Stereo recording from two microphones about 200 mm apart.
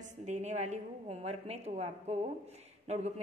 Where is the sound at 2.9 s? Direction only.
35° right (ahead or behind).